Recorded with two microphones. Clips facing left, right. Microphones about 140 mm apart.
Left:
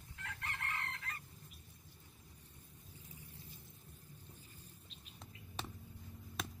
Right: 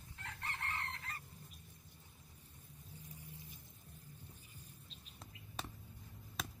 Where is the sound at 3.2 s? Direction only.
15° right (ahead or behind).